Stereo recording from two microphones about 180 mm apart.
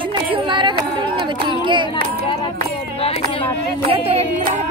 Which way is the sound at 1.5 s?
25° right (ahead or behind).